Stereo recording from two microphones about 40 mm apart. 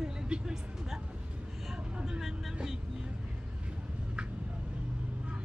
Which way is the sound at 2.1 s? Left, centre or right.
Centre.